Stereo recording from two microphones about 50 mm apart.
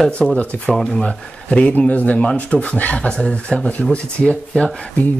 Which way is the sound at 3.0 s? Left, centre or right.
Centre.